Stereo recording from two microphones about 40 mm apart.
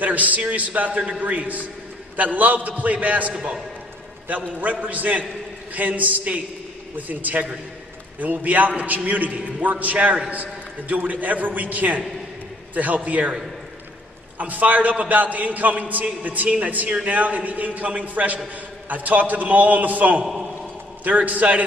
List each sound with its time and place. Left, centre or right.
0.0 s a man's voice: right
4.6 s a man's voice: right
9.9 s a man's voice: right
10.3 s a man's voice: right
14.4 s a man's voice: right